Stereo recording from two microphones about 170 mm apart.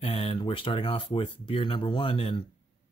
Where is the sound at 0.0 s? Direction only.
35° left (ahead or behind).